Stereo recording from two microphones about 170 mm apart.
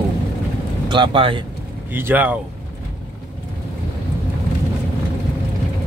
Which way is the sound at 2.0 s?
10° right (ahead or behind).